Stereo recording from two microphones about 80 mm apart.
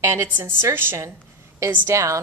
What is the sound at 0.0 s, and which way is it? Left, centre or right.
A woman's voice, right.